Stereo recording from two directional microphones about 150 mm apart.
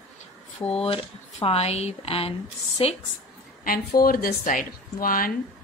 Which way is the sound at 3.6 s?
75° left (ahead or behind).